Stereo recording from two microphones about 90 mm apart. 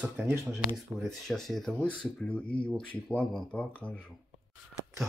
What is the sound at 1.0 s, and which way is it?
Speech, 5° left (ahead or behind).